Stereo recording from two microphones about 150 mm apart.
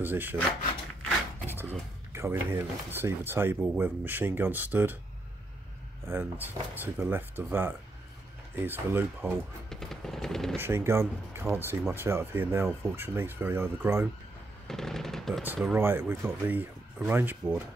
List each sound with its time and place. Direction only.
0.0 s speech: 15° right (ahead or behind)
1.6 s speech: 15° right (ahead or behind)
6.0 s speech: 10° right (ahead or behind)
9.7 s vehicle: 5° left (ahead or behind)
10.6 s speech: 15° right (ahead or behind)
14.7 s machine gun: 5° left (ahead or behind)
15.4 s speech: 10° right (ahead or behind)